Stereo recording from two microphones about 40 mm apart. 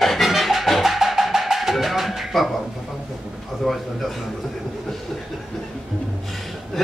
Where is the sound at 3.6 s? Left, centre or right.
Centre.